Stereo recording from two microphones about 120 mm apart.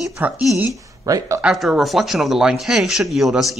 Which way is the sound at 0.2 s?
15° right (ahead or behind).